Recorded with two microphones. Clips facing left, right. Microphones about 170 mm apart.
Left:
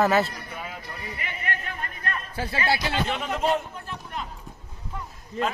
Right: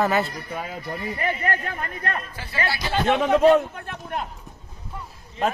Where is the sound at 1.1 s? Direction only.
45° right (ahead or behind).